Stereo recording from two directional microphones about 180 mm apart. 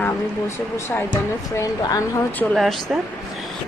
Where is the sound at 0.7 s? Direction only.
15° left (ahead or behind).